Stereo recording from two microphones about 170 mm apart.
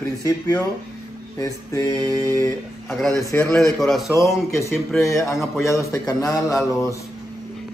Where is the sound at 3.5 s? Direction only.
Centre (ahead or behind).